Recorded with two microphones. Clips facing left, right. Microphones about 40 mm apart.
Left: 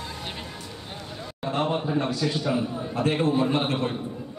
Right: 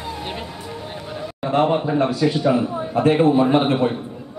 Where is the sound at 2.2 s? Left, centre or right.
Centre.